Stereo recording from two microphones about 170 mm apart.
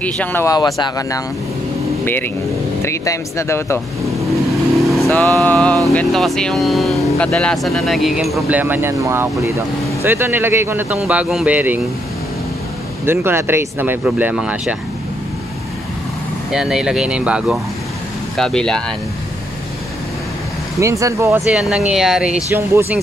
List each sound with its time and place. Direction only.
0.0 s speech: 10° left (ahead or behind)
0.6 s speech: 25° left (ahead or behind)
2.8 s speech: 15° left (ahead or behind)
4.7 s vehicle: centre (ahead or behind)
5.4 s speech: 10° left (ahead or behind); by 11.8 s 10° right (ahead or behind)
13.0 s speech: 15° right (ahead or behind)
16.5 s speech: 5° right (ahead or behind)
20.8 s speech: 15° right (ahead or behind)
21.5 s speech: centre (ahead or behind)
22.5 s speech: 15° right (ahead or behind)